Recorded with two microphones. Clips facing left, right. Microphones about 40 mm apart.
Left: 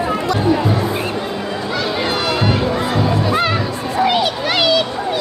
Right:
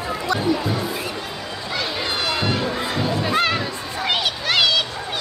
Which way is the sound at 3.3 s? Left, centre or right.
Centre.